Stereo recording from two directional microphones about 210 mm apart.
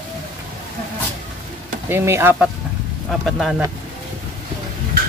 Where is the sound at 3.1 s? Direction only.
Centre (ahead or behind).